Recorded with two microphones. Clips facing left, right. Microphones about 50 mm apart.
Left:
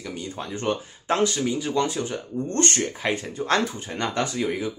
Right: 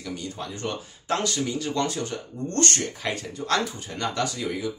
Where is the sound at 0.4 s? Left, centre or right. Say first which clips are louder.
Left 8 dB; left.